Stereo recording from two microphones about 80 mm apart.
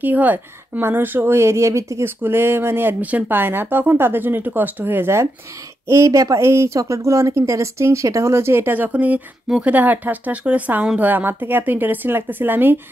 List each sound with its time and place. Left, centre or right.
0.0 s speech: right